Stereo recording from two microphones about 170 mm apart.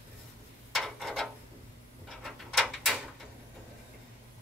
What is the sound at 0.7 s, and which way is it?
Mechanisms, centre (ahead or behind).